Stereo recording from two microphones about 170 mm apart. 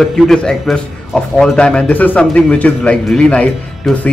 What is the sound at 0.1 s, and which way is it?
A man's voice, centre (ahead or behind).